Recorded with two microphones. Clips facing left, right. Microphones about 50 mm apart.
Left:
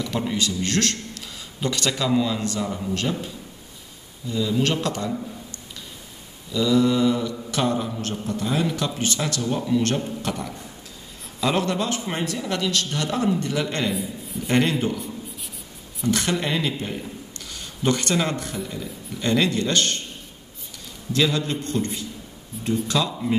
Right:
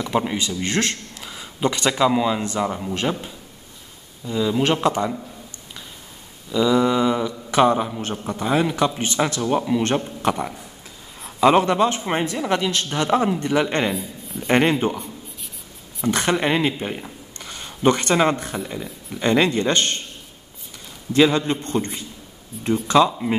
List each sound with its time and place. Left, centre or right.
0.0 s a man's voice: right
6.5 s a man's voice: right
13.9 s a man's voice: centre
14.5 s a man's voice: right
16.1 s a man's voice: right
21.1 s a man's voice: right